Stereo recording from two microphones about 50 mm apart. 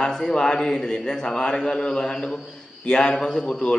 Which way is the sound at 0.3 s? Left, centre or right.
Centre.